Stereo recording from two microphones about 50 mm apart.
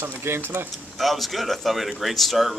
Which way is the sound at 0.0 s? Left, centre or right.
Right.